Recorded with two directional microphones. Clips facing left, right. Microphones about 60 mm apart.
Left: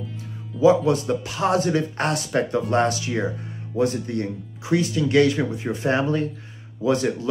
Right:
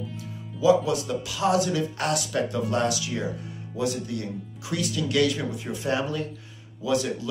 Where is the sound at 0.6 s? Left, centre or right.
Left.